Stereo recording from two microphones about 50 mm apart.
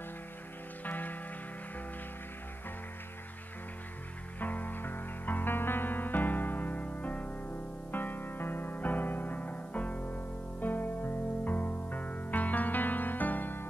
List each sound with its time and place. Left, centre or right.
0.8 s music: left
4.4 s music: left